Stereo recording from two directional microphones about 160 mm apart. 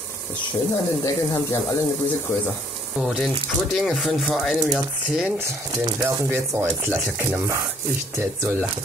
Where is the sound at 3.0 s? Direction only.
Centre (ahead or behind).